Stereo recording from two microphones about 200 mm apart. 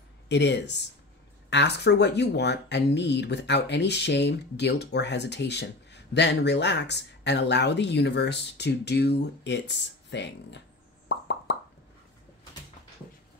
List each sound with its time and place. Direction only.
0.3 s speech: 60° left (ahead or behind)
11.1 s plop: 55° left (ahead or behind)